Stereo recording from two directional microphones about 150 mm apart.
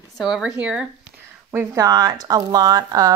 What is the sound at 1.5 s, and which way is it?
Speech, 20° right (ahead or behind).